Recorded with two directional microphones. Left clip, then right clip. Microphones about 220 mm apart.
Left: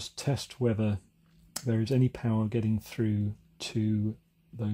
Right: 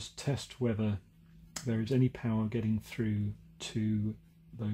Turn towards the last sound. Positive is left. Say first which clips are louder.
# left 4 dB
turn(degrees=35)  # may be behind; listen again after turning